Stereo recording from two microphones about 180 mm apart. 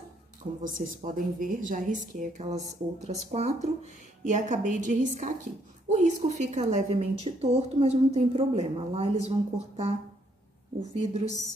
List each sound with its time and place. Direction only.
0.6 s a woman's voice: 45° right (ahead or behind)